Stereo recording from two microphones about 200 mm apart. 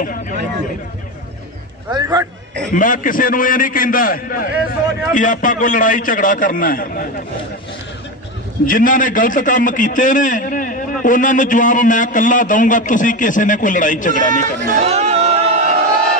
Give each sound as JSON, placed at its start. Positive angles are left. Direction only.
{"t": 0.0, "sound": "a man's voice", "side_deg": 45}
{"t": 1.9, "sound": "a man's voice", "side_deg": -20}
{"t": 2.7, "sound": "a man's voice", "side_deg": 40}
{"t": 8.6, "sound": "a man's voice", "side_deg": 40}
{"t": 14.7, "sound": "a sound", "side_deg": -35}